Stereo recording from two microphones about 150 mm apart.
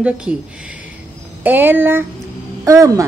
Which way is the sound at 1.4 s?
15° right (ahead or behind).